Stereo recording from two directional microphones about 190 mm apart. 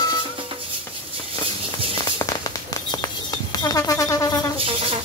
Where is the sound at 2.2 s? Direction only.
20° left (ahead or behind).